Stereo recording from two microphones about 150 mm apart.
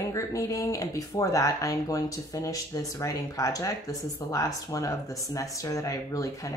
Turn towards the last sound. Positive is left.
turn(degrees=20)  # may be behind; listen again after turning